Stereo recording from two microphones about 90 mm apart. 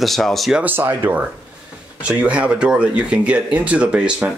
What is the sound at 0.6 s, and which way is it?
Speech, 20° right (ahead or behind).